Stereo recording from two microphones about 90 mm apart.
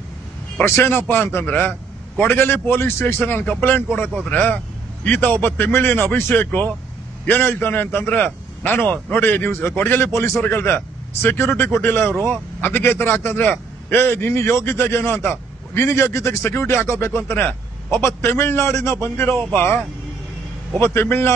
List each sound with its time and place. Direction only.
0.7 s a man's voice: 25° left (ahead or behind)